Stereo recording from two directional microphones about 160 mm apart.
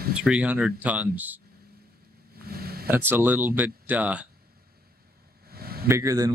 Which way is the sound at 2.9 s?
15° right (ahead or behind).